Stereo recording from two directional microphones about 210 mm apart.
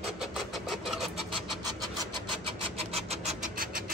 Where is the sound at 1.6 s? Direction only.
20° right (ahead or behind).